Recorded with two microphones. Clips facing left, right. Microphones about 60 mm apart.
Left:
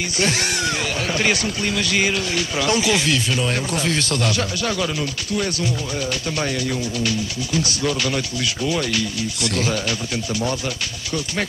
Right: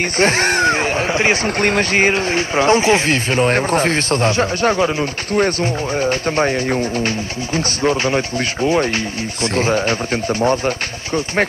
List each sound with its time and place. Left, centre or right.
0.2 s speech: right
1.6 s speech: right